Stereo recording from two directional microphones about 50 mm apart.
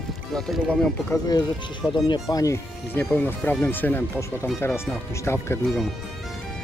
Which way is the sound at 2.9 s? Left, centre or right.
Left.